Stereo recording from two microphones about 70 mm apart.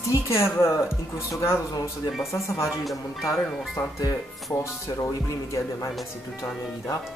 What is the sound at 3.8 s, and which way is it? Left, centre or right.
Speech, left.